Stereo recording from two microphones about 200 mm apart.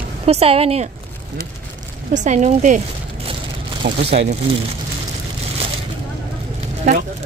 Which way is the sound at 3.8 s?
60° right (ahead or behind).